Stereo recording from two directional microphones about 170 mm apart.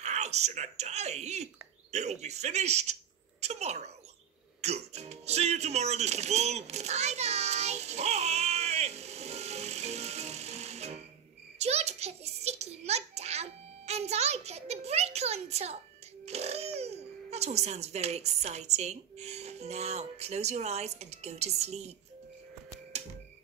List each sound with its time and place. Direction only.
0.0 s speech: 40° right (ahead or behind)
4.6 s music: 40° right (ahead or behind)
11.5 s a child's voice: 40° right (ahead or behind)